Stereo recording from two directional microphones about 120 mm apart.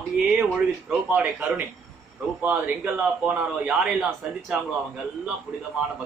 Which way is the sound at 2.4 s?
15° right (ahead or behind).